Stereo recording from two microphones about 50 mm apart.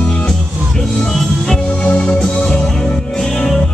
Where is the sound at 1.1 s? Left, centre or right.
Centre.